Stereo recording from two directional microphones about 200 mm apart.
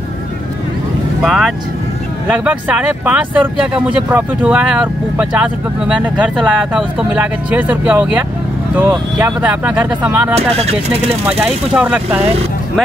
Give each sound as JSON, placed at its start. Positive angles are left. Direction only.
{"t": 1.2, "sound": "speech", "side_deg": -5}
{"t": 10.6, "sound": "speech", "side_deg": -30}
{"t": 11.2, "sound": "speech", "side_deg": -5}